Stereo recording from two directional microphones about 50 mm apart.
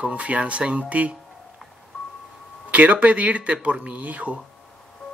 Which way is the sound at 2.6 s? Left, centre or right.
Right.